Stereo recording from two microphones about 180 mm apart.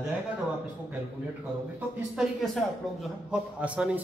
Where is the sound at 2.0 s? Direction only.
5° right (ahead or behind).